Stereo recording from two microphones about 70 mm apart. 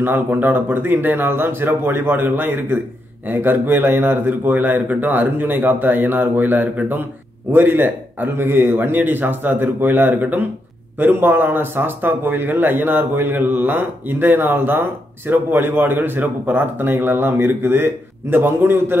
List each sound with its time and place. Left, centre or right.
0.0 s a man's voice: right